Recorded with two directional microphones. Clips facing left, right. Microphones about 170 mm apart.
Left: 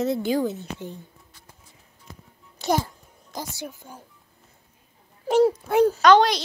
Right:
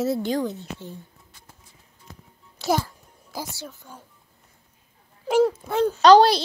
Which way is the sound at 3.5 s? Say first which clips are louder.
Left 3 dB; 15° left (ahead or behind).